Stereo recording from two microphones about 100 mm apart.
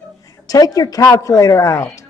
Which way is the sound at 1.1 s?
35° left (ahead or behind).